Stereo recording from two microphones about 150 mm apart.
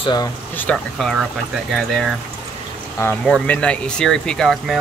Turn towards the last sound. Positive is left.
turn(degrees=0)  # may be behind; listen again after turning